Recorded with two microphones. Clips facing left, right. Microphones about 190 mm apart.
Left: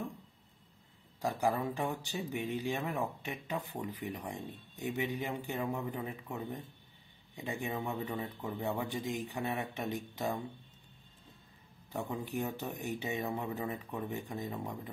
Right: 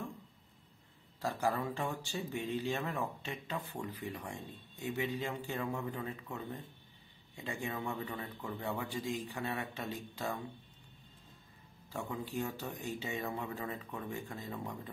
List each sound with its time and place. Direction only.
1.2 s speech: 15° left (ahead or behind)
11.9 s speech: 20° left (ahead or behind)